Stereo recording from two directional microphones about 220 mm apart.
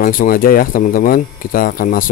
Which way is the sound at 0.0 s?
40° left (ahead or behind).